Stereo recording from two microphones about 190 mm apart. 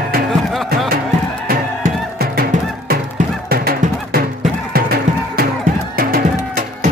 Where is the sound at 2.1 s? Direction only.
55° right (ahead or behind).